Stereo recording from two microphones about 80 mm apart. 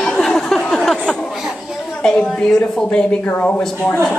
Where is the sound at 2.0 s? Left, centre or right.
Centre.